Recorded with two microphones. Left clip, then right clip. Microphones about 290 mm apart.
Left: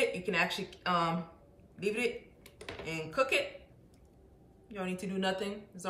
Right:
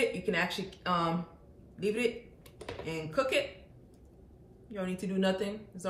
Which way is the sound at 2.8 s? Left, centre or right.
Centre.